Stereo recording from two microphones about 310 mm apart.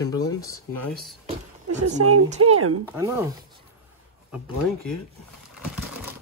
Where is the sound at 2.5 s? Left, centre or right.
Right.